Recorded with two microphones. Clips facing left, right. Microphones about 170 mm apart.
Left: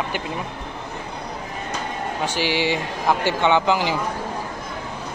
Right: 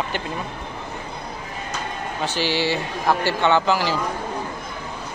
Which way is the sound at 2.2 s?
15° left (ahead or behind).